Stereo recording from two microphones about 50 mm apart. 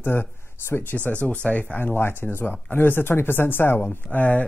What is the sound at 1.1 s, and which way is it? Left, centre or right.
Speech, left.